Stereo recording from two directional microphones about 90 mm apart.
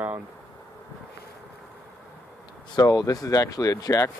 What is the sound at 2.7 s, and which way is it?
Speech, 45° left (ahead or behind).